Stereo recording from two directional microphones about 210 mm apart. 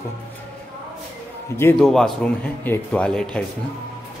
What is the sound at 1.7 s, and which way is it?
Speech, centre (ahead or behind).